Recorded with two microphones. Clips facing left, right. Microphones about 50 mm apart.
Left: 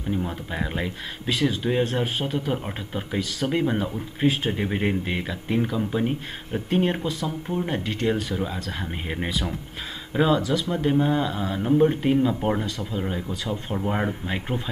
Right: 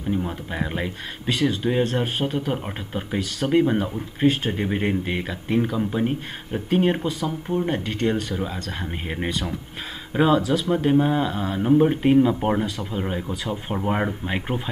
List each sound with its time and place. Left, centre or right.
0.1 s speech: centre